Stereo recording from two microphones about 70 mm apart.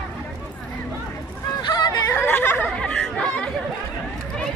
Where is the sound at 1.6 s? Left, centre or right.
Left.